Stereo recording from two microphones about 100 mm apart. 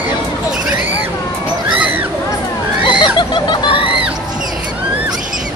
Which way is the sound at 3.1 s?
50° left (ahead or behind).